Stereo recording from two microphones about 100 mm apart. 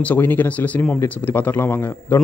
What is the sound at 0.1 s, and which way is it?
A man's voice, 20° left (ahead or behind).